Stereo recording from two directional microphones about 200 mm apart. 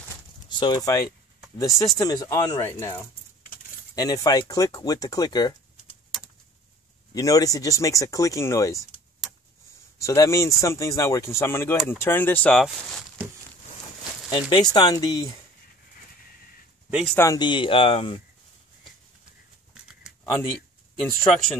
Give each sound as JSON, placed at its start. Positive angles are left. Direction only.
{"t": 0.5, "sound": "speech", "side_deg": 25}
{"t": 7.2, "sound": "speech", "side_deg": 15}
{"t": 9.9, "sound": "speech", "side_deg": 15}
{"t": 14.3, "sound": "speech", "side_deg": 25}
{"t": 17.0, "sound": "speech", "side_deg": 10}
{"t": 21.0, "sound": "speech", "side_deg": 5}